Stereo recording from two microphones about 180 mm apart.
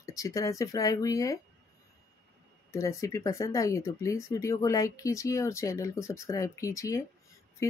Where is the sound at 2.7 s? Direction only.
15° left (ahead or behind).